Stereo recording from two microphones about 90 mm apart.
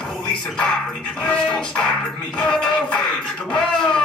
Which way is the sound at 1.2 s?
10° left (ahead or behind).